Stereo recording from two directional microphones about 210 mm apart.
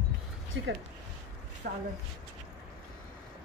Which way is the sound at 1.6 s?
50° right (ahead or behind).